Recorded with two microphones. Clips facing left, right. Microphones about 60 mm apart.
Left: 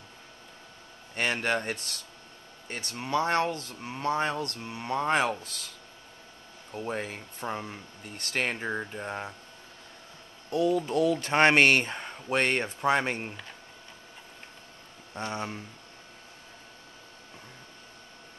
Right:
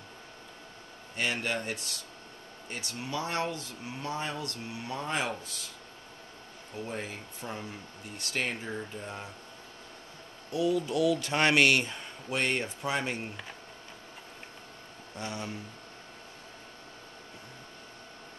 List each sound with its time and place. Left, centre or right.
1.1 s speech: left
6.9 s speech: left
10.5 s speech: left
15.1 s speech: left